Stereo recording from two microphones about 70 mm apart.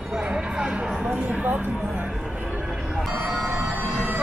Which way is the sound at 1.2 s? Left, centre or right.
Centre.